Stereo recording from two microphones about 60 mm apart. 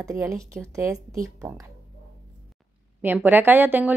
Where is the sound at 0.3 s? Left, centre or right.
Right.